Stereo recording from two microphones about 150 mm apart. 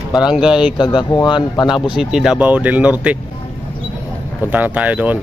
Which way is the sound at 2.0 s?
5° right (ahead or behind).